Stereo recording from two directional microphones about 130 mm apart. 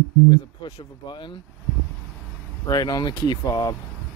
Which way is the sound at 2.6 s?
30° left (ahead or behind).